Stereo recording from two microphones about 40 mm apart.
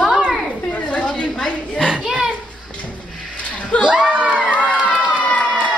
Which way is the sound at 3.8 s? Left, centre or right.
Right.